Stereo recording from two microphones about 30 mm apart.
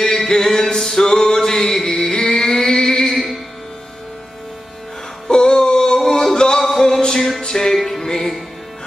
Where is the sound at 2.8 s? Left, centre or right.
Centre.